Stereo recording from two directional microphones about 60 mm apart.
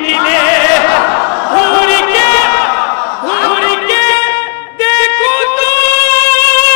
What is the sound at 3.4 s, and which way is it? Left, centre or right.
Music, left.